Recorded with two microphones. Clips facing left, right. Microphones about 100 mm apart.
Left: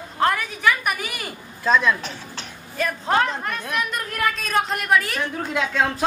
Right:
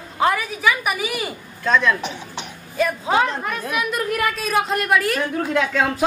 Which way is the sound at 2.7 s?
5° right (ahead or behind).